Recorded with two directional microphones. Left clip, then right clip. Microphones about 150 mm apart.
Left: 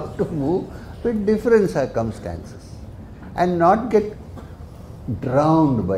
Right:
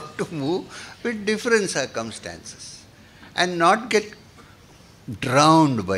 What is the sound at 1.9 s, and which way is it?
Speech, 10° right (ahead or behind).